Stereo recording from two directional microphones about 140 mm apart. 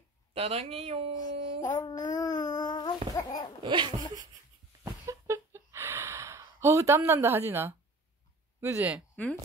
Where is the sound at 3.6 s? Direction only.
35° right (ahead or behind).